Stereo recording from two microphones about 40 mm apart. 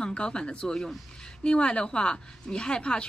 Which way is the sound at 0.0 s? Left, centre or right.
Left.